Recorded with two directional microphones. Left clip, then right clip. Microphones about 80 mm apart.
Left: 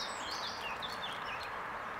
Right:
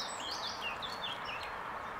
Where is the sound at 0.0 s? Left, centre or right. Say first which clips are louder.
Even; left.